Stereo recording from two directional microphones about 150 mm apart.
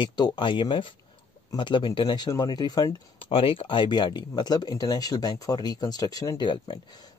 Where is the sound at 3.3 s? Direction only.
40° left (ahead or behind).